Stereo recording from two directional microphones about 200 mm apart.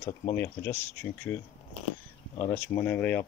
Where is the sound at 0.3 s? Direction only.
10° left (ahead or behind).